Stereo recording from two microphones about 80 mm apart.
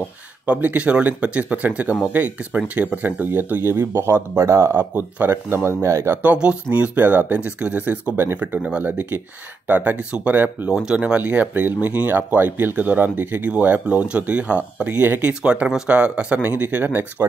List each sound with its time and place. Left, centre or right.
0.5 s speech: centre; by 6.1 s right
6.2 s speech: centre
8.5 s speech: centre
8.8 s speech: right
10.7 s speech: centre